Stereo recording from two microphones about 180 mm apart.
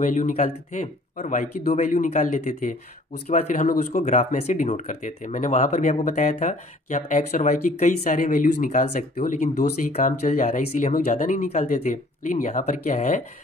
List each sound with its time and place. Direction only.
0.0 s speech: 45° left (ahead or behind)